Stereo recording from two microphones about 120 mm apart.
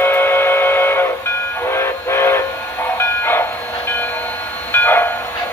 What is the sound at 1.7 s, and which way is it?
Train, 20° left (ahead or behind).